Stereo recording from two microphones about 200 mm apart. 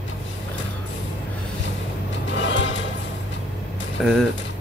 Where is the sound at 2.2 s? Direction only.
65° left (ahead or behind).